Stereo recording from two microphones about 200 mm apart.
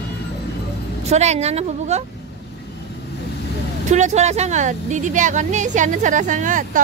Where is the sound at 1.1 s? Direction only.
35° right (ahead or behind).